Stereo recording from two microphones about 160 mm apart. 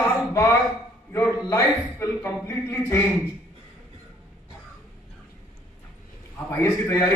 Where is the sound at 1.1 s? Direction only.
15° left (ahead or behind).